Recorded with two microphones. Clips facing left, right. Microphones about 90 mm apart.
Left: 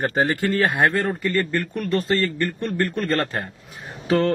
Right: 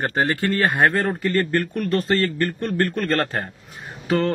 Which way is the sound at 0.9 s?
40° right (ahead or behind).